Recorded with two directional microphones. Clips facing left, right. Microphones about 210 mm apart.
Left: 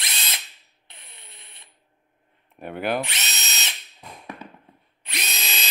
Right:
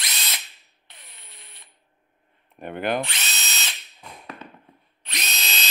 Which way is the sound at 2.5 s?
5° left (ahead or behind).